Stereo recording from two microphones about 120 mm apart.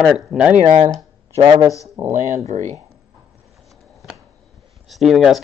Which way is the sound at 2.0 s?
70° right (ahead or behind).